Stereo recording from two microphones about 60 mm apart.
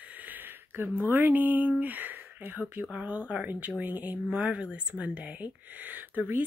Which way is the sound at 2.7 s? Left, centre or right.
Right.